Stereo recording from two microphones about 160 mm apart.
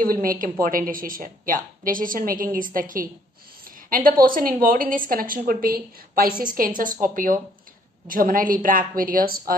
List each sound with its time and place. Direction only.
0.0 s a woman's voice: 60° right (ahead or behind)